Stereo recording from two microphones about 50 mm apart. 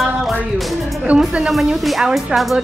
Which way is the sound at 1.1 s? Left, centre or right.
Right.